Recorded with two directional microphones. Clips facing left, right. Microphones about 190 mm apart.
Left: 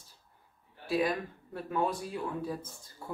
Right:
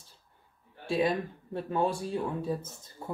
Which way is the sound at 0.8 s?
25° right (ahead or behind).